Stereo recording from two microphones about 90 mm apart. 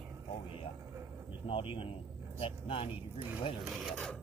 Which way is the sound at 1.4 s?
80° left.